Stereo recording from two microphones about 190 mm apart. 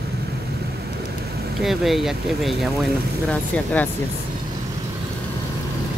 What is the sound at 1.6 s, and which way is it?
Speech, centre (ahead or behind).